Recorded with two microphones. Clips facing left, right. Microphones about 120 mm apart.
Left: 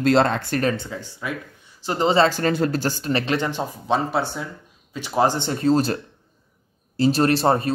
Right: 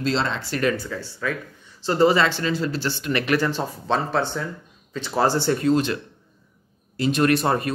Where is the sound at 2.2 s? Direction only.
45° left (ahead or behind); by 5.6 s 20° left (ahead or behind).